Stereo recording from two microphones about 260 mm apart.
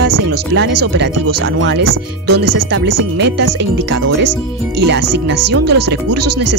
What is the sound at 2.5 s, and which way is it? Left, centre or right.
Speech, right.